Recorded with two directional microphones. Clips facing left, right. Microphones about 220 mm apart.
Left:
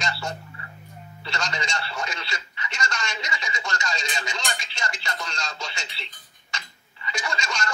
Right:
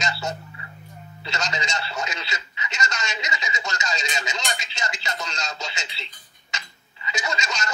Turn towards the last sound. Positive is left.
turn(degrees=-20)  # may be behind; listen again after turning